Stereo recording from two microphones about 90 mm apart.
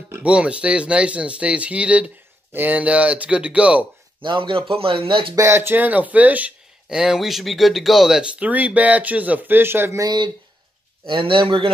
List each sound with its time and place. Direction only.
0.2 s speech: 15° right (ahead or behind)
4.2 s speech: 65° right (ahead or behind)
5.3 s speech: 30° right (ahead or behind)
10.0 s speech: 55° right (ahead or behind)
11.1 s speech: 70° right (ahead or behind)